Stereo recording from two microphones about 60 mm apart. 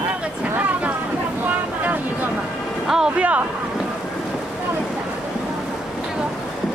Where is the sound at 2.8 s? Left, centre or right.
Centre.